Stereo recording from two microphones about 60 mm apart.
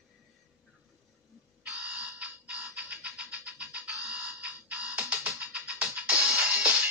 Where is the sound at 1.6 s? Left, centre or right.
Right.